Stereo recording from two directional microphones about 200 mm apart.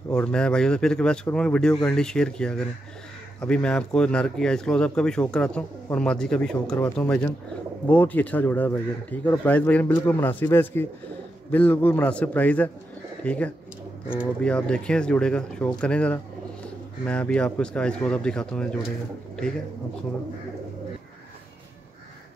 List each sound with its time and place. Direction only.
0.1 s speech: 5° left (ahead or behind)